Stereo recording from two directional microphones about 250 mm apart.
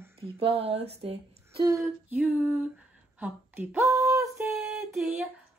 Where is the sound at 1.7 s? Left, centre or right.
Centre.